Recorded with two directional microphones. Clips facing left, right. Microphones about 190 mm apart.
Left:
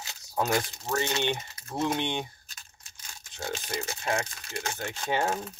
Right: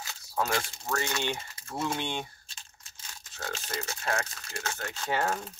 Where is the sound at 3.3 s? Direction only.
15° left (ahead or behind).